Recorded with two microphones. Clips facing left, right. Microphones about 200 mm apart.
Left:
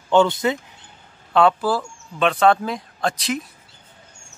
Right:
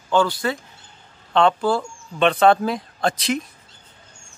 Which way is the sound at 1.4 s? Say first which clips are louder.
Even; 5° left (ahead or behind).